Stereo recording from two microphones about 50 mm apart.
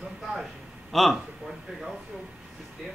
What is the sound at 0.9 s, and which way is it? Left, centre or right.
Speech, centre.